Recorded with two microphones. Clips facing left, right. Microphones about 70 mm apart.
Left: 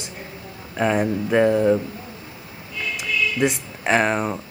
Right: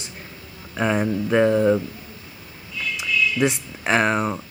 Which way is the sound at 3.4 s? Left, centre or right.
Centre.